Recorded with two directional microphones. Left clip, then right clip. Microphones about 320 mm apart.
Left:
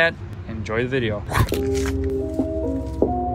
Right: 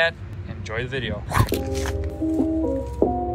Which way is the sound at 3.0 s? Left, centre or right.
Centre.